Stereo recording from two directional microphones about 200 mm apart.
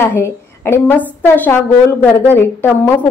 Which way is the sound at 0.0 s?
10° left (ahead or behind).